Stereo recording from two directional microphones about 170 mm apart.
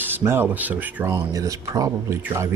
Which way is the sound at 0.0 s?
15° right (ahead or behind).